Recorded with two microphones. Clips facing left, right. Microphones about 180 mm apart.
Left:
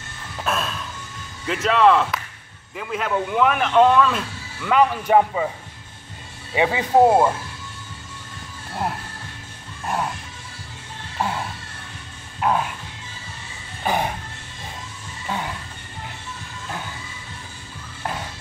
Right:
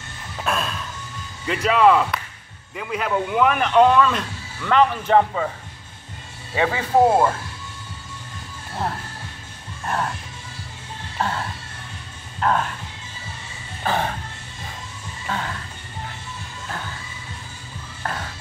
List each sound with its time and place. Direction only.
0.4 s speech: centre (ahead or behind)
6.5 s speech: 15° left (ahead or behind)
9.8 s speech: 5° left (ahead or behind)
11.1 s music: 10° left (ahead or behind)
12.4 s speech: 10° left (ahead or behind)
13.8 s speech: 15° left (ahead or behind)
15.2 s speech: 15° left (ahead or behind)